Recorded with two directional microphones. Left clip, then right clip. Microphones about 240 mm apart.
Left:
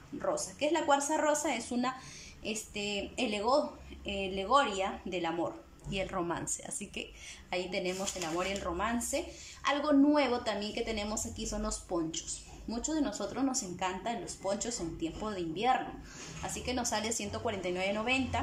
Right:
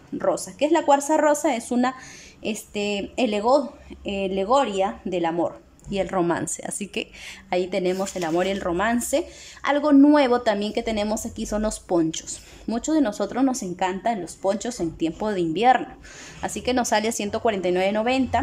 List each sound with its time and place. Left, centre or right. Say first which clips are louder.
0.2 s speech: right 10 dB; right